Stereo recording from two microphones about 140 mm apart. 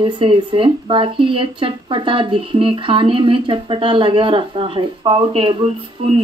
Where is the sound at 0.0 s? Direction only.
35° right (ahead or behind).